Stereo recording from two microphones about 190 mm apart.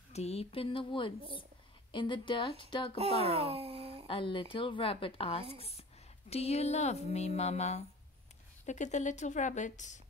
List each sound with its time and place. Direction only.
0.1 s a woman's voice: 35° left (ahead or behind)
3.0 s speech: 30° right (ahead or behind)
4.1 s a woman's voice: 25° left (ahead or behind)